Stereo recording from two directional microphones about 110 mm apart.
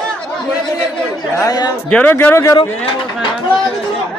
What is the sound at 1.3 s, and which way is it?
Speech, 35° left (ahead or behind).